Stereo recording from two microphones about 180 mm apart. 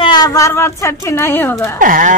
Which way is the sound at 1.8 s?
50° right (ahead or behind).